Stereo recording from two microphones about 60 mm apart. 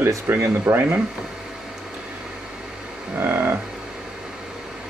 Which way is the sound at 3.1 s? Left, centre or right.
Right.